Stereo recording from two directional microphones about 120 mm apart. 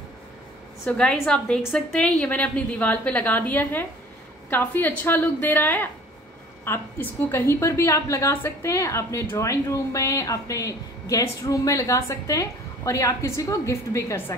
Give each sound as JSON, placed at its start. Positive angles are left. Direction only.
{"t": 0.8, "sound": "a woman's voice", "side_deg": 10}